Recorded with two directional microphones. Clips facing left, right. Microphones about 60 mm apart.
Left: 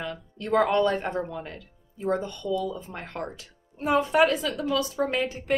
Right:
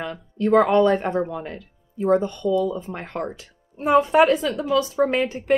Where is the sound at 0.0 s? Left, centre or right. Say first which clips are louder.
Right 9 dB; right.